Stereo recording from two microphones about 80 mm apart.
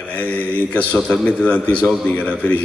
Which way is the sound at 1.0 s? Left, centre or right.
Centre.